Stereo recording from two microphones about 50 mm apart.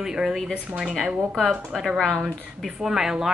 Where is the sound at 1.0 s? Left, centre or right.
Centre.